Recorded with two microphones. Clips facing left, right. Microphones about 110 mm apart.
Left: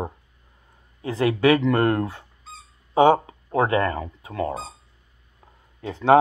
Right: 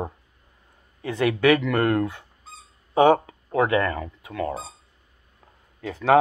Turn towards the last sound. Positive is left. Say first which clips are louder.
# left 2 dB
turn(degrees=25)  # may be behind; listen again after turning